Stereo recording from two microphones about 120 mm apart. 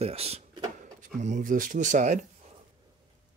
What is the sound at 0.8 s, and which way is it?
Speech, 90° right.